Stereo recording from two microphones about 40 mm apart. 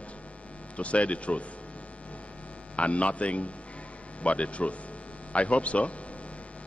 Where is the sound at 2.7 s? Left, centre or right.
Left.